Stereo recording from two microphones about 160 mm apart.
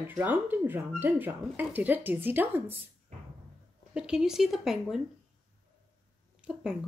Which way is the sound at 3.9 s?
5° right (ahead or behind).